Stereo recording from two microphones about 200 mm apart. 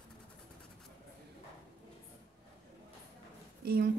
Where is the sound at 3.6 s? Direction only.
50° right (ahead or behind).